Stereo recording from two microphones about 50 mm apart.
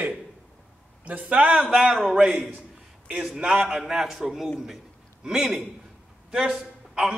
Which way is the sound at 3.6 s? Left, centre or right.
Centre.